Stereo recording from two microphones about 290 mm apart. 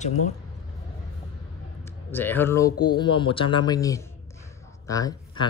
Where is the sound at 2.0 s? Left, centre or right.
Centre.